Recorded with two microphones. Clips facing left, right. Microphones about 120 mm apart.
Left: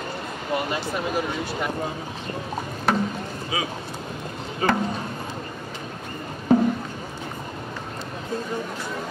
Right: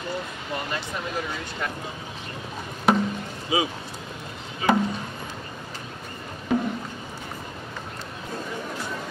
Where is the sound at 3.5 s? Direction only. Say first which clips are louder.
Right 4 dB; 25° right (ahead or behind).